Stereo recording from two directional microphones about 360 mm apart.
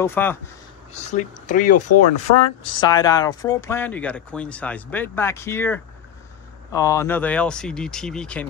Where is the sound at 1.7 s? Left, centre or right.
Left.